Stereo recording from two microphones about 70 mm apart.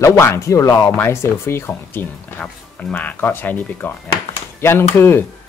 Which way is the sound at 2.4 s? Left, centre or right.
Centre.